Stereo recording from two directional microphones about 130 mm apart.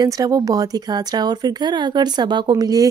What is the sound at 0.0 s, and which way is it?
Speech, 30° right (ahead or behind).